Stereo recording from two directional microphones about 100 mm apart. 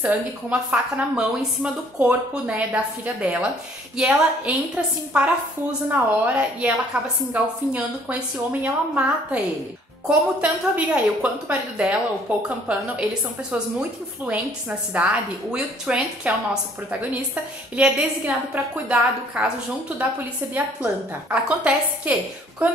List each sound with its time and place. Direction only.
0.0 s a woman's voice: 15° right (ahead or behind)
15.5 s a woman's voice: 10° right (ahead or behind)
17.7 s a woman's voice: 10° right (ahead or behind)
20.5 s a woman's voice: 15° right (ahead or behind)